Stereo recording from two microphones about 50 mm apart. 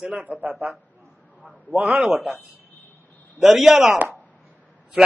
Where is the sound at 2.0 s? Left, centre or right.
Centre.